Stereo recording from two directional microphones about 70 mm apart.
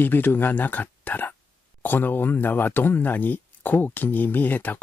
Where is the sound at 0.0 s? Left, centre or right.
Left.